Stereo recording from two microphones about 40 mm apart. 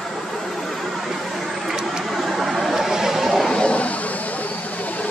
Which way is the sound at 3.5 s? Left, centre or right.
Left.